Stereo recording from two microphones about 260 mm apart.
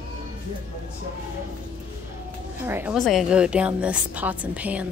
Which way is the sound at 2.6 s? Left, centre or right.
Centre.